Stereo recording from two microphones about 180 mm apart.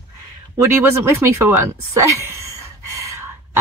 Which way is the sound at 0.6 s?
15° right (ahead or behind).